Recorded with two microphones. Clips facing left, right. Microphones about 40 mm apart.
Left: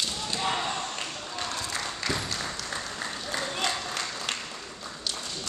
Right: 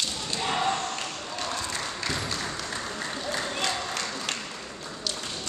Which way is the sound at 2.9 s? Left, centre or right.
Centre.